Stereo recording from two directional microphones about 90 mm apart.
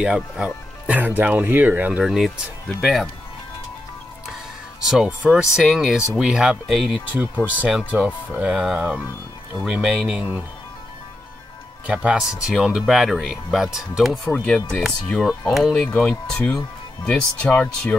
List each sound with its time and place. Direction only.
0.0 s speech: 10° right (ahead or behind)
2.0 s speech: centre (ahead or behind)
4.8 s speech: 10° right (ahead or behind)
11.9 s speech: 10° right (ahead or behind)
14.2 s speech: 15° left (ahead or behind)
15.7 s speech: 15° left (ahead or behind)